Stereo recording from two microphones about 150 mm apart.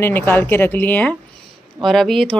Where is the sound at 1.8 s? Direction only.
Centre (ahead or behind).